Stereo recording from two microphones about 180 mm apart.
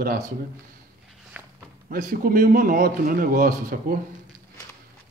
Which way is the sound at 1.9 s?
55° right (ahead or behind).